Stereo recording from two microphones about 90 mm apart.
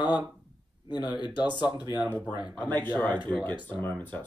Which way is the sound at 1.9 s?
20° right (ahead or behind).